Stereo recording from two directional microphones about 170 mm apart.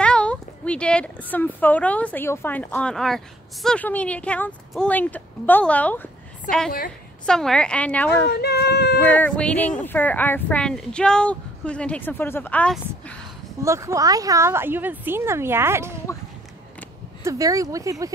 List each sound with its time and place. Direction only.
0.0 s speech: 5° left (ahead or behind)
7.2 s speech: 5° left (ahead or behind)
8.3 s speech: 70° left (ahead or behind)
9.0 s speech: 10° left (ahead or behind)
13.6 s a woman's voice: 15° right (ahead or behind)
16.1 s speech: 15° left (ahead or behind)
17.2 s speech: 20° right (ahead or behind)